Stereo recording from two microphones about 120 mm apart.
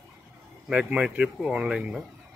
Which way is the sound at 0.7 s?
10° right (ahead or behind).